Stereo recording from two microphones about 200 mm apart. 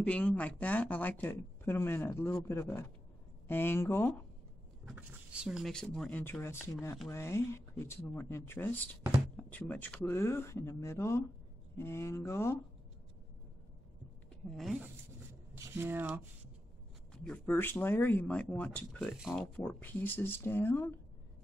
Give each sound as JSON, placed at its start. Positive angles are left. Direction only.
{"t": 0.0, "sound": "speech", "side_deg": 5}
{"t": 4.8, "sound": "speech", "side_deg": -5}
{"t": 14.5, "sound": "speech", "side_deg": 0}
{"t": 17.1, "sound": "speech", "side_deg": 5}